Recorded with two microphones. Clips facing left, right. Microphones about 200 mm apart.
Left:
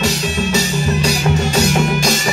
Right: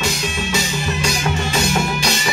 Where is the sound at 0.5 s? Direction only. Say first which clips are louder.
Left 4 dB; 40° left (ahead or behind).